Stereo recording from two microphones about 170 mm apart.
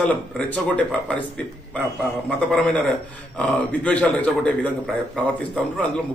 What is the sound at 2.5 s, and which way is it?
A man's voice, 5° left (ahead or behind).